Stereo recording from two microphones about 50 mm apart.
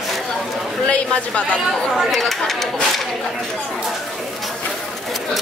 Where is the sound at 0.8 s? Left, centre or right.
Left.